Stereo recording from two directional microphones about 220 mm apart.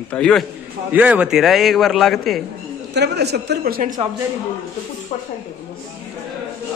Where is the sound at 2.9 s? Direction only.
50° right (ahead or behind).